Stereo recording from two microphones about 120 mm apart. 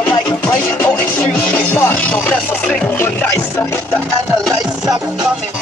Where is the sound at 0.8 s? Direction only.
15° left (ahead or behind).